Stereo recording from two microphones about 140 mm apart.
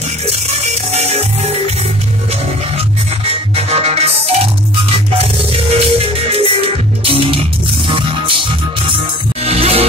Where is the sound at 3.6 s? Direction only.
50° right (ahead or behind).